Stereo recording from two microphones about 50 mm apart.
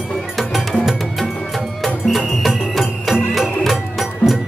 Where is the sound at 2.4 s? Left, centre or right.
Centre.